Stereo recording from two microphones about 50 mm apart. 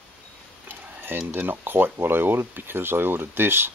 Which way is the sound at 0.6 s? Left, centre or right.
Right.